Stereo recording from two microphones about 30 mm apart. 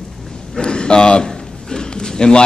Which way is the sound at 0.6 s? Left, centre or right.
Left.